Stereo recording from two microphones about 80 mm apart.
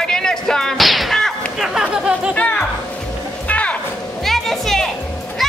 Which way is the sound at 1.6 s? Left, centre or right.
Centre.